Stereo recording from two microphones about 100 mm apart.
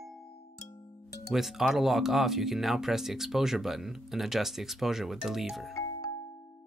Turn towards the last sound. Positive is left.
turn(degrees=40)  # may be behind; listen again after turning